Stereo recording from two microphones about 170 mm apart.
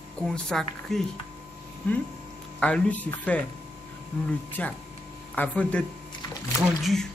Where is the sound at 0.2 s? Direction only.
5° left (ahead or behind).